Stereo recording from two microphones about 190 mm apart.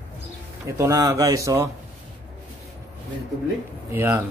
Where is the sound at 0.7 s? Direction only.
15° right (ahead or behind).